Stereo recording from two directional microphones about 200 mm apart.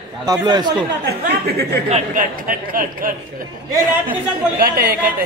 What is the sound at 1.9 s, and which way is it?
Speech, 40° right (ahead or behind).